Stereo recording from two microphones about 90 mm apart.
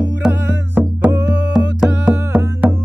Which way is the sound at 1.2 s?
10° right (ahead or behind).